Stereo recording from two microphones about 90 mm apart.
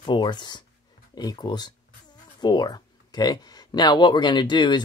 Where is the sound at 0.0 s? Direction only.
55° left (ahead or behind).